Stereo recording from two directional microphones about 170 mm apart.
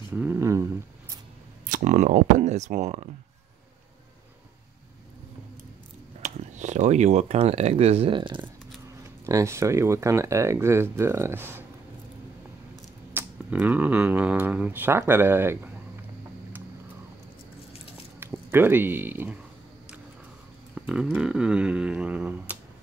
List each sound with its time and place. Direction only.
0.1 s a sound: 10° right (ahead or behind)
1.7 s speech: 50° right (ahead or behind)
6.2 s speech: 45° right (ahead or behind); by 8.4 s 30° right (ahead or behind)
9.2 s speech: 15° right (ahead or behind)
13.1 s speech: 10° right (ahead or behind)
18.2 s speech: 10° right (ahead or behind)
20.7 s speech: 5° right (ahead or behind)